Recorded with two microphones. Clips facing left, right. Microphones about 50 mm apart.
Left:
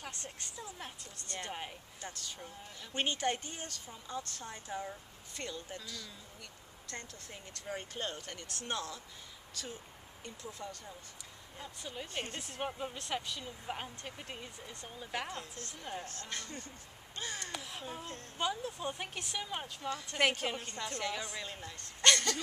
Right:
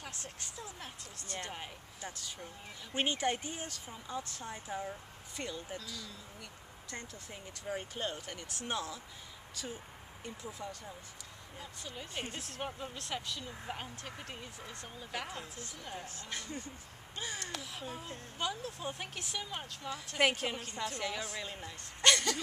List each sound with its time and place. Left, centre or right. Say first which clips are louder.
0.0 s speech: left 1 dB; centre
2.0 s a woman's voice: right 1 dB; centre
6.9 s a woman's voice: right 1 dB; centre
11.5 s speech: left 2 dB; centre
15.2 s a woman's voice: left 1 dB; centre